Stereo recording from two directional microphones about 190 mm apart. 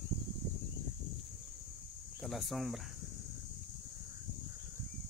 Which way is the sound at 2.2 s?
Centre (ahead or behind).